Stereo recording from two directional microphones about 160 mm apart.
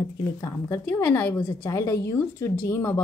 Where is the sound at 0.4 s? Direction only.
15° left (ahead or behind).